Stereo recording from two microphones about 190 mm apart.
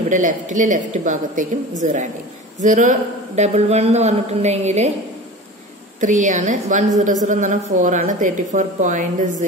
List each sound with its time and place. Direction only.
0.1 s a man's voice: 40° right (ahead or behind)
5.9 s a man's voice: 40° right (ahead or behind)